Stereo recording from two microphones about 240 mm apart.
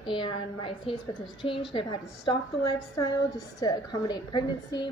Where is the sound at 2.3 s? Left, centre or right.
Centre.